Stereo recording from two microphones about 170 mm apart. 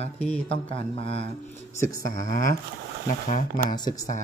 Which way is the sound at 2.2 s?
50° left (ahead or behind).